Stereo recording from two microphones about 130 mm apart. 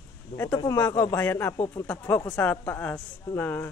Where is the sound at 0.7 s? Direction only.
15° left (ahead or behind).